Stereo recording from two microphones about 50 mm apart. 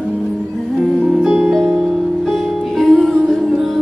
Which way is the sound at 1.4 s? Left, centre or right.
Centre.